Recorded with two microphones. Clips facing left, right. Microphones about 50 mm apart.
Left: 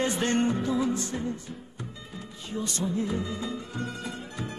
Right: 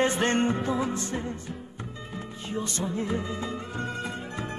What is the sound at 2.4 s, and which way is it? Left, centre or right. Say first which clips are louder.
Music: even; right.